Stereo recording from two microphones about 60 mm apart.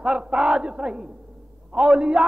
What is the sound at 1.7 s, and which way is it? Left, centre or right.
Speech, centre.